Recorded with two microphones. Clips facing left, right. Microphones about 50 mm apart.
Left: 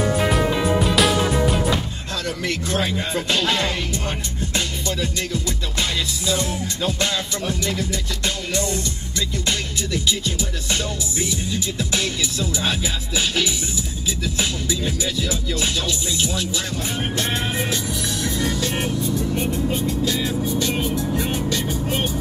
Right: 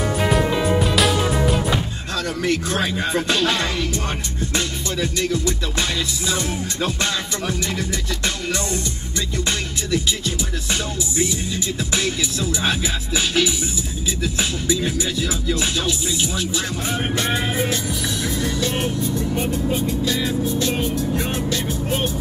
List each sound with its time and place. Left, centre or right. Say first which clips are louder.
0.0 s music: even; centre
2.4 s music: right 2 dB; right
3.3 s music: right 1 dB; right
10.2 s music: right 1 dB; right
14.2 s music: right 2 dB; right
18.2 s music: even; centre
20.1 s music: right 1 dB; centre
21.2 s vehicle: even; centre